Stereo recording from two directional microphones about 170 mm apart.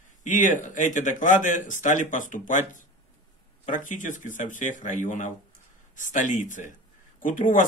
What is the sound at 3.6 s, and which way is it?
A man's voice, 50° left (ahead or behind).